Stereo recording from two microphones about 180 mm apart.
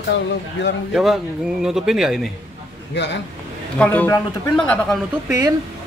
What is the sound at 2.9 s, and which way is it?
Speech, 75° left (ahead or behind).